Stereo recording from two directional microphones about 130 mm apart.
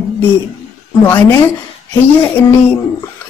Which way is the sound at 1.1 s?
15° left (ahead or behind).